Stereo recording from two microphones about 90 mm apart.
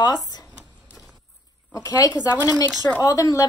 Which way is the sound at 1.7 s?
40° left (ahead or behind).